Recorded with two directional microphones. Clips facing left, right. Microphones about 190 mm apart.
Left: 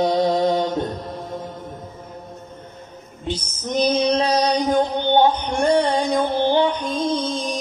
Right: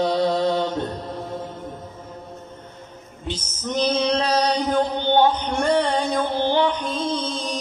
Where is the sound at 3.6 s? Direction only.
15° left (ahead or behind).